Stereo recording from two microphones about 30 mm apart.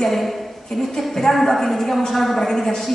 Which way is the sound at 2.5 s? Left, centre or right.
Centre.